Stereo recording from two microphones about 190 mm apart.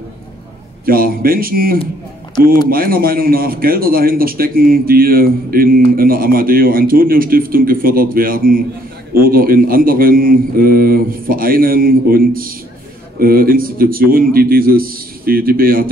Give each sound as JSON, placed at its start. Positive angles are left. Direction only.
{"t": 0.8, "sound": "a man's voice", "side_deg": -50}